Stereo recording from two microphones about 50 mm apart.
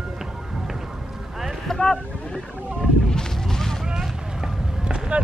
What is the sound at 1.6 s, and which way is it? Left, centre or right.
Boat, centre.